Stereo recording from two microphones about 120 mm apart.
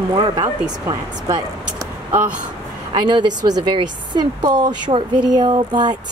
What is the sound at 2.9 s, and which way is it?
A woman's voice, 40° right (ahead or behind).